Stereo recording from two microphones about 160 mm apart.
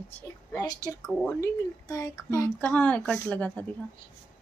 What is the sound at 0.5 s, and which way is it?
Speech, 25° left (ahead or behind).